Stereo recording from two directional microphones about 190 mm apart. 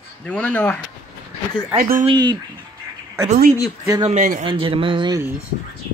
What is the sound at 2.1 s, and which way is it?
Speech, 25° right (ahead or behind).